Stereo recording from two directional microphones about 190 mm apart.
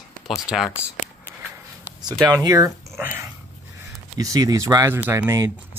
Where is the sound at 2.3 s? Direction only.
20° right (ahead or behind).